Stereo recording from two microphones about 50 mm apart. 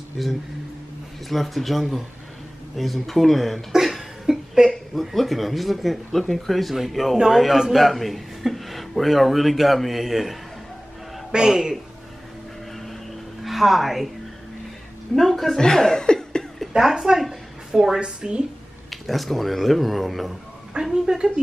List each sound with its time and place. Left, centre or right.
0.2 s speech: centre
2.7 s a sound: centre
4.9 s a woman's voice: centre
11.3 s a woman's voice: centre
13.4 s a woman's voice: centre
15.1 s speech: centre
16.7 s a woman's voice: centre
18.9 s speech: centre
20.7 s a woman's voice: centre